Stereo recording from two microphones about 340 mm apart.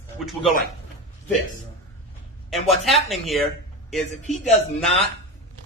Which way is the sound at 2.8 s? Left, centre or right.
Centre.